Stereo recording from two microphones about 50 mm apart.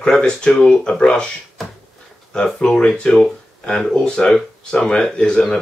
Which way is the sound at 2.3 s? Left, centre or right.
Centre.